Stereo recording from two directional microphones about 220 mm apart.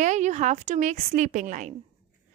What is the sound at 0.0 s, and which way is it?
A woman's voice, 35° right (ahead or behind).